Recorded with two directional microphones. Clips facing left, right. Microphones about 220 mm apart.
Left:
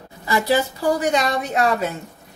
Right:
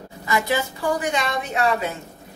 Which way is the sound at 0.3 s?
35° left (ahead or behind).